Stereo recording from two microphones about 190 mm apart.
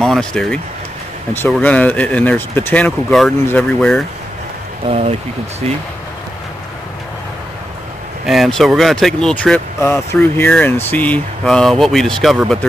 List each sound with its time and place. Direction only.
0.0 s speech: 5° left (ahead or behind)
4.8 s speech: 30° right (ahead or behind)
8.3 s speech: centre (ahead or behind)